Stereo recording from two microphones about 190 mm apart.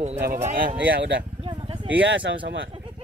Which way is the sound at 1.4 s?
25° right (ahead or behind).